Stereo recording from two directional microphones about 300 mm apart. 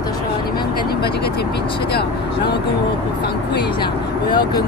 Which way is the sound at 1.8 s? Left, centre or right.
Left.